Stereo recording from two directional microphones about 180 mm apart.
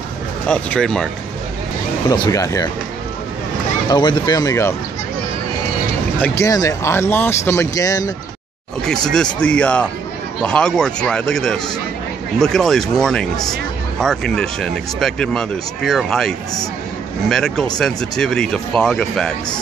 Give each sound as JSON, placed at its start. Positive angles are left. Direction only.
{"t": 0.5, "sound": "speech", "side_deg": 5}
{"t": 2.0, "sound": "speech", "side_deg": 20}
{"t": 3.9, "sound": "speech", "side_deg": 25}
{"t": 6.2, "sound": "speech", "side_deg": 15}
{"t": 8.8, "sound": "speech", "side_deg": 5}